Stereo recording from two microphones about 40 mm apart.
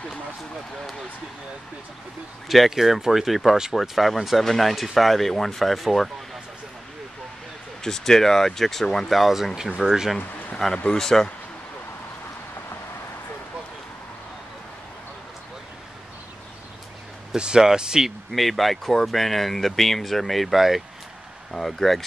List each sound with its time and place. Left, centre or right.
2.4 s speech: centre
7.8 s speech: centre
9.1 s speech: centre
10.6 s speech: centre
17.4 s speech: centre
18.3 s speech: centre
21.5 s speech: centre